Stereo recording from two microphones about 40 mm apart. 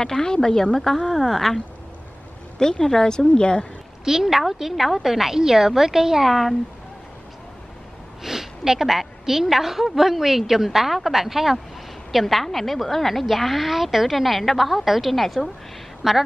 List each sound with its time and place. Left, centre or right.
0.0 s a woman's voice: centre
2.8 s speech: centre
4.0 s a woman's voice: centre
8.2 s a woman's voice: centre